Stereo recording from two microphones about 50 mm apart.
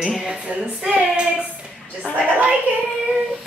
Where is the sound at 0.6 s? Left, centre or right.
Centre.